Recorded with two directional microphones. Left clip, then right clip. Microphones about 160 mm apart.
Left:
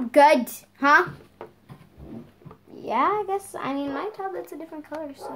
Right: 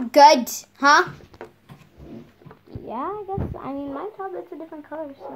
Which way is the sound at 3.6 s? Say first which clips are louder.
Left 2 dB; 35° right (ahead or behind).